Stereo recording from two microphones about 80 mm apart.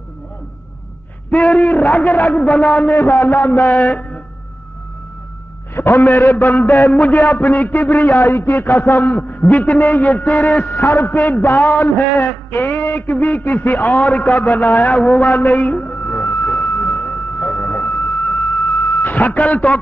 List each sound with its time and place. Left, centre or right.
1.3 s a man's voice: centre
2.9 s a man's voice: left
5.8 s a man's voice: left; by 15.3 s centre
15.3 s a man's voice: left
15.7 s a sound: centre
16.1 s a sound: centre
19.0 s speech: left